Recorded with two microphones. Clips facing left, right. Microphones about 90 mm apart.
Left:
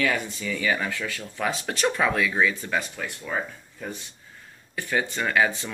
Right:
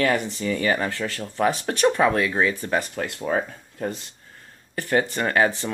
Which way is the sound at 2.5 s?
55° right (ahead or behind).